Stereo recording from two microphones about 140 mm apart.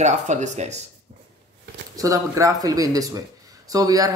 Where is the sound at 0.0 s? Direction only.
55° right (ahead or behind).